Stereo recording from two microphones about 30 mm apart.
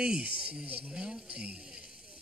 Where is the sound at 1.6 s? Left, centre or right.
Right.